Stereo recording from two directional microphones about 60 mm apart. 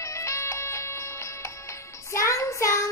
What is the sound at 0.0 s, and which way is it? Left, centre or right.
Music, left.